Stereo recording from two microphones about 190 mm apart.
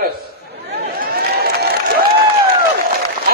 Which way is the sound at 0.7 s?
55° right (ahead or behind).